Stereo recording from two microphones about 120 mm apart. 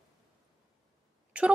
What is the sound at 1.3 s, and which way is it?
Speech, 10° right (ahead or behind).